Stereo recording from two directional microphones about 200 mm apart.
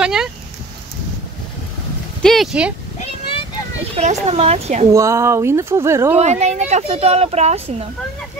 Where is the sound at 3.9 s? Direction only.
30° right (ahead or behind).